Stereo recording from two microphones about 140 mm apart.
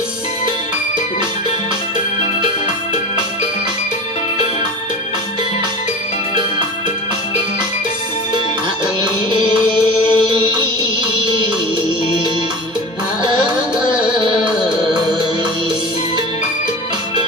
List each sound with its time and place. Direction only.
9.0 s music: 35° right (ahead or behind)